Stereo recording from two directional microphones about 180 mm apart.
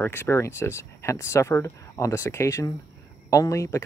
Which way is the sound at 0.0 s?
10° left (ahead or behind).